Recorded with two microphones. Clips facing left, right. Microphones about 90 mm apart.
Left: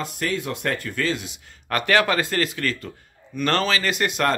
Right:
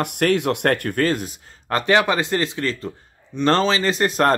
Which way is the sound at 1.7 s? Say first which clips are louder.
Right 2 dB; 25° right (ahead or behind).